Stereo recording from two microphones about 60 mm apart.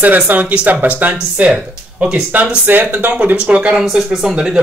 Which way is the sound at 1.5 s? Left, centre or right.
Centre.